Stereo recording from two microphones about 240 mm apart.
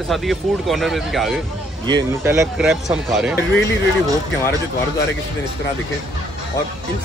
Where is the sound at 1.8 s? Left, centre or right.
Centre.